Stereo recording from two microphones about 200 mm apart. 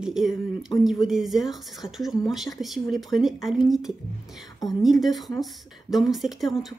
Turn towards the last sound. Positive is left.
turn(degrees=0)  # may be behind; listen again after turning